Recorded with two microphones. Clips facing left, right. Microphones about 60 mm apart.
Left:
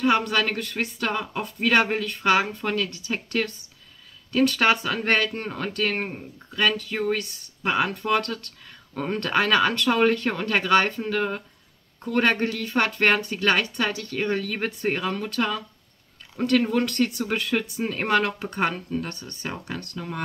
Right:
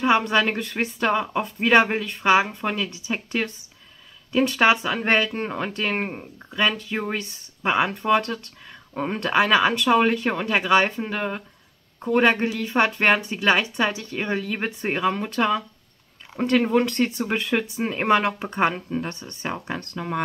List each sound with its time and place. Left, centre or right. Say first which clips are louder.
0.0 s speech: right 2 dB; right